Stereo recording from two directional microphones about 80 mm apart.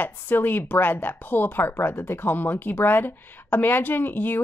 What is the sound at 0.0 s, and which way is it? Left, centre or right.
Speech, left.